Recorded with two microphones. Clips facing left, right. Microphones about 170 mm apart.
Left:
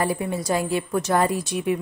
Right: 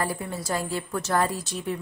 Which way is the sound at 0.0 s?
15° left (ahead or behind).